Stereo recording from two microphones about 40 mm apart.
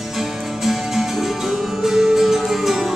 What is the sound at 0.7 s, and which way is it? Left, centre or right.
Music, centre.